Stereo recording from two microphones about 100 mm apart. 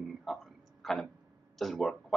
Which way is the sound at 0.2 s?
Centre (ahead or behind).